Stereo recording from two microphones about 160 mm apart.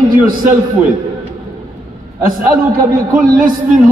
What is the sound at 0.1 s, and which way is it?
Speech, 60° right (ahead or behind).